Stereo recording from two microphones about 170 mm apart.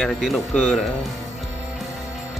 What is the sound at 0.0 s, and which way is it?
Speech, centre (ahead or behind).